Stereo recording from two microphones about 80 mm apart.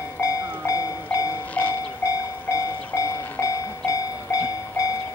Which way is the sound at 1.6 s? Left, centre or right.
Centre.